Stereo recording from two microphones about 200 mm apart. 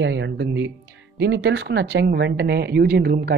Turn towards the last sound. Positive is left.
turn(degrees=-50)  # may be behind; listen again after turning